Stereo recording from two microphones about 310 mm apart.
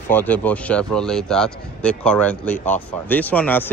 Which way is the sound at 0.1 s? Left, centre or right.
Centre.